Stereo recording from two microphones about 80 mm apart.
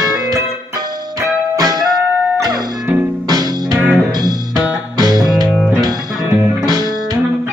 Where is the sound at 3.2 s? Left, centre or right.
Right.